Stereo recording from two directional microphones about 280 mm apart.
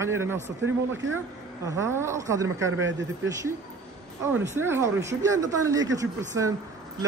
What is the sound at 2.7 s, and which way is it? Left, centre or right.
Speech, right.